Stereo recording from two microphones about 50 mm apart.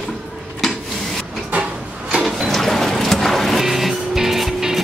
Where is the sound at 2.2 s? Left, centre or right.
Centre.